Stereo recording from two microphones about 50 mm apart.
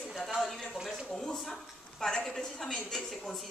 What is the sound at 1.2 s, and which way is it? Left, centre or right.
A woman's voice, centre.